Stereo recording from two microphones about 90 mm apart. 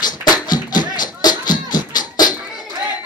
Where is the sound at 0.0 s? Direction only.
50° left (ahead or behind).